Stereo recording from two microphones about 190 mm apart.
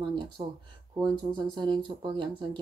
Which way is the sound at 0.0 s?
25° right (ahead or behind).